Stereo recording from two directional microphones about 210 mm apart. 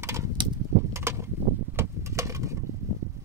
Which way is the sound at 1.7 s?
15° right (ahead or behind).